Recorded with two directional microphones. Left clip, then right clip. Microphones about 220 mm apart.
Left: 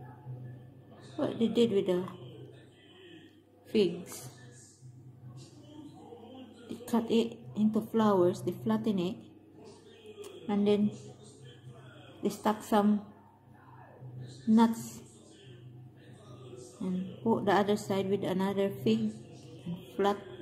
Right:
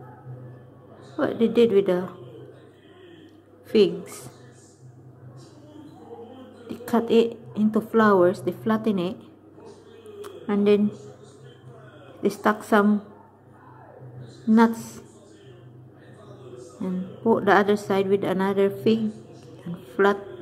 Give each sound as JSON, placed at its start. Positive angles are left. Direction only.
{"t": 1.1, "sound": "a woman's voice", "side_deg": -5}
{"t": 3.7, "sound": "a woman's voice", "side_deg": -10}
{"t": 6.8, "sound": "a woman's voice", "side_deg": -10}
{"t": 10.2, "sound": "a sound", "side_deg": -5}
{"t": 12.2, "sound": "a woman's voice", "side_deg": -5}
{"t": 16.8, "sound": "a woman's voice", "side_deg": -10}
{"t": 20.0, "sound": "speech", "side_deg": -5}